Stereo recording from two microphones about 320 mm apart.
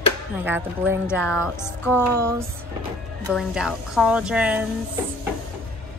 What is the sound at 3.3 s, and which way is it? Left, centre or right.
A woman's voice, centre.